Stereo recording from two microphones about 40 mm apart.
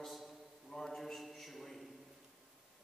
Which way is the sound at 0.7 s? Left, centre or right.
Centre.